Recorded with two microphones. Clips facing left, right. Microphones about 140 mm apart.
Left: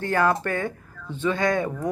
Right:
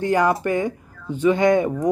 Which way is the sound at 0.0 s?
15° right (ahead or behind).